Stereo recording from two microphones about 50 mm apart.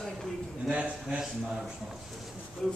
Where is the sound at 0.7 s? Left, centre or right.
Right.